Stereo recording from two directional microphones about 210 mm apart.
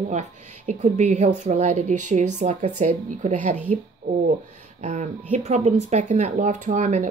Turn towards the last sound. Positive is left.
turn(degrees=-35)  # may be behind; listen again after turning